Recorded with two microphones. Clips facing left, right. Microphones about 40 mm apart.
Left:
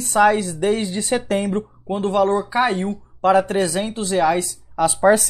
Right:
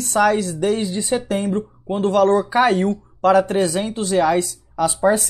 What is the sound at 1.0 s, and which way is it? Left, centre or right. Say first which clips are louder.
Speech: even; left.